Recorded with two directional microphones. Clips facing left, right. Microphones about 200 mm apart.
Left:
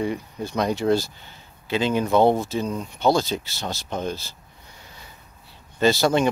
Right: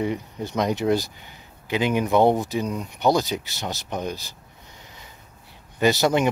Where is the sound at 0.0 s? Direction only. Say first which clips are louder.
Even; 20° right (ahead or behind).